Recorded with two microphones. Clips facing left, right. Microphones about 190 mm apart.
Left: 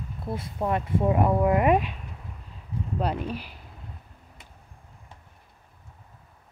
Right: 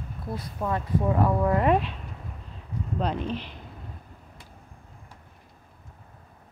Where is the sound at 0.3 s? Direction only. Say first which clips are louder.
Left 2 dB; 20° left (ahead or behind).